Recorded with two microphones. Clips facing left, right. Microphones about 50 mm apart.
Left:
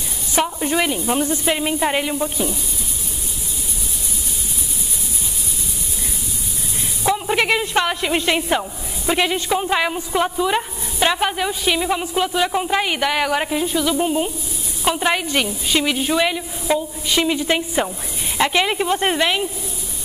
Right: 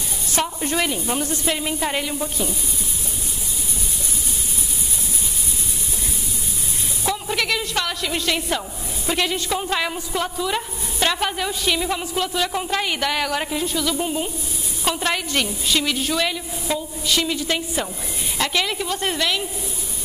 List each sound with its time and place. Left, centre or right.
0.3 s a woman's voice: centre
7.0 s a woman's voice: left